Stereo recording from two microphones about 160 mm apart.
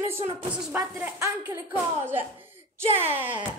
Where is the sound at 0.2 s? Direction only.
35° right (ahead or behind).